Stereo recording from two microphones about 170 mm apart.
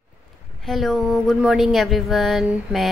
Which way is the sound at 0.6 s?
Centre (ahead or behind).